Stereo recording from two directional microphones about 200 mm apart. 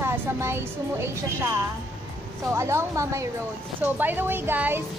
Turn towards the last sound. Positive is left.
turn(degrees=-10)  # may be behind; listen again after turning